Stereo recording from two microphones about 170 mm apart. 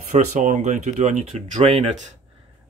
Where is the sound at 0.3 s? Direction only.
45° right (ahead or behind).